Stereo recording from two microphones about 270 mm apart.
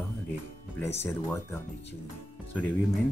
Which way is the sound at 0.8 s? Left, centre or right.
Centre.